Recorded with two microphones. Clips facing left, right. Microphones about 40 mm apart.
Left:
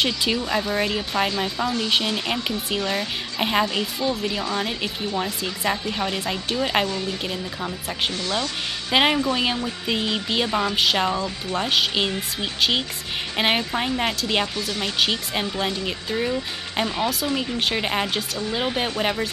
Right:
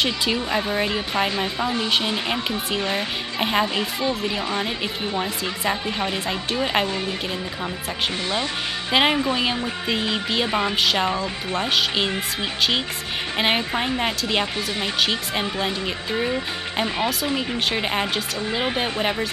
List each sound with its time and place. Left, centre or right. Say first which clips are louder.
0.0 s speech: even; centre
0.4 s a woman's voice: even; centre
2.8 s a woman's voice: even; centre
3.3 s a woman's voice: even; centre
4.3 s a woman's voice: right 1 dB; centre
8.9 s speech: even; centre
10.5 s a woman's voice: right 1 dB; centre
10.8 s speech: even; centre
16.1 s a woman's voice: right 1 dB; centre
17.6 s speech: even; centre